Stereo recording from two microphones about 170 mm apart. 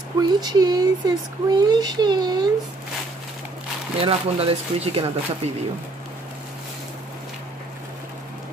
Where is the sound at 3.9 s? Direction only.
35° right (ahead or behind).